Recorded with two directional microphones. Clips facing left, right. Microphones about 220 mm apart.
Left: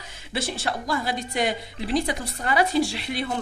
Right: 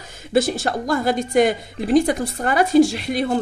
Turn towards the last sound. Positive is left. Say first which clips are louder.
# right 9 dB
turn(degrees=-45)  # may be behind; listen again after turning